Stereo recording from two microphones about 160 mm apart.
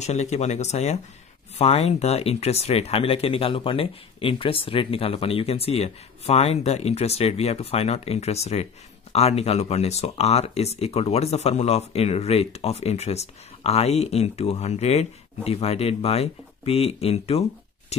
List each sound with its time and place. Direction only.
0.0 s speech: 45° left (ahead or behind)